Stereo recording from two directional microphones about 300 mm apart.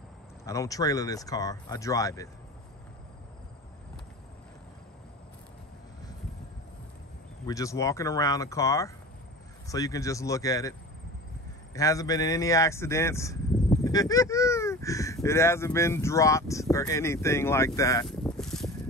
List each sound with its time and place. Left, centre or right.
0.5 s speech: centre
7.4 s speech: centre
11.7 s speech: centre